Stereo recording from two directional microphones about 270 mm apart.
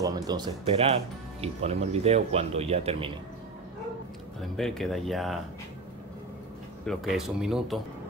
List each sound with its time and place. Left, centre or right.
0.0 s speech: centre
4.4 s speech: centre
6.9 s speech: centre